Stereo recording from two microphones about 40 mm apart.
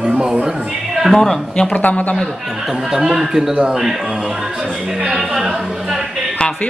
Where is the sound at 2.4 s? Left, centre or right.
Centre.